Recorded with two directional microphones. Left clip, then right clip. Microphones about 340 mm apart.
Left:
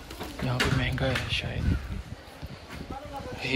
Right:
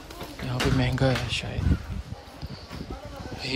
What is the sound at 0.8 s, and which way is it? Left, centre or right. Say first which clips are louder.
Speech: right 3 dB; centre.